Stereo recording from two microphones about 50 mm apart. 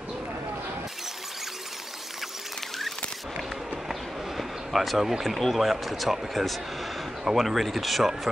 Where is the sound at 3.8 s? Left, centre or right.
Centre.